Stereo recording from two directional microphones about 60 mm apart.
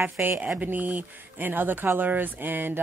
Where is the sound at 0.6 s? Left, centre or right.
Right.